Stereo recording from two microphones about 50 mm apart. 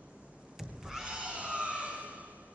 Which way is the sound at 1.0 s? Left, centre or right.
Right.